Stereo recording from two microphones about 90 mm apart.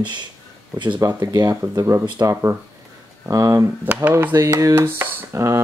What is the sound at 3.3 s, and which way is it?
Speech, 40° right (ahead or behind).